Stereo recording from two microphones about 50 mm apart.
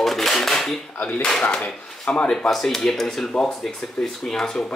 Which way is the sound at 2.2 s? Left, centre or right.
Centre.